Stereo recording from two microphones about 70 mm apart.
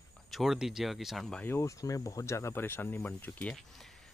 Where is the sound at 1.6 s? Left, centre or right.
Left.